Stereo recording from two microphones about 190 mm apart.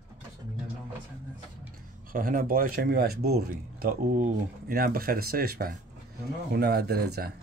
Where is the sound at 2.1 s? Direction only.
50° right (ahead or behind).